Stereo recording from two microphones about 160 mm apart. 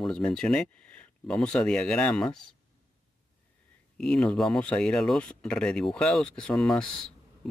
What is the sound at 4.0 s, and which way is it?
Speech, 5° left (ahead or behind).